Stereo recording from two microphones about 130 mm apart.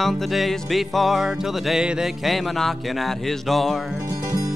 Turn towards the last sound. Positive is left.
turn(degrees=0)  # may be behind; listen again after turning